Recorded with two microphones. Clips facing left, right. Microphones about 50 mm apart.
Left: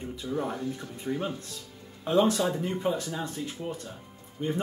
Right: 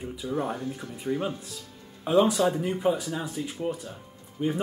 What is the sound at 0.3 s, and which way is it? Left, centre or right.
Speech, right.